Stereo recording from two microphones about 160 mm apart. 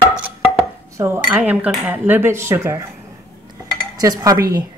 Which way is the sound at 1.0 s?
15° right (ahead or behind).